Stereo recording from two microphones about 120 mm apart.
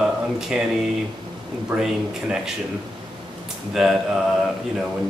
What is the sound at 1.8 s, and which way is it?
Speech, 5° right (ahead or behind).